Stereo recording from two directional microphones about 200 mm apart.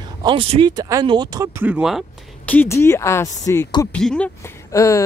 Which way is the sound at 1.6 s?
5° right (ahead or behind).